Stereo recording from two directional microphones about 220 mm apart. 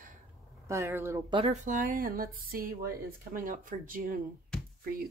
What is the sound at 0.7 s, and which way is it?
Speech, 10° right (ahead or behind).